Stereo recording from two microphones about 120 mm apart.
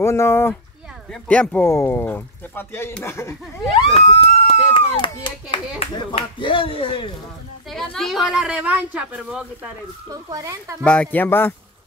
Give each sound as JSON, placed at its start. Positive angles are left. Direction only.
{"t": 0.0, "sound": "speech", "side_deg": 20}
{"t": 3.9, "sound": "a child's voice", "side_deg": 55}
{"t": 7.7, "sound": "speech", "side_deg": 5}
{"t": 10.3, "sound": "speech", "side_deg": -25}
{"t": 10.8, "sound": "speech", "side_deg": 15}